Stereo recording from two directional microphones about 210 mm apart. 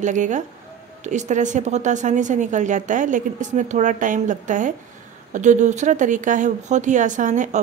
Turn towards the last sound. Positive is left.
turn(degrees=-35)  # may be behind; listen again after turning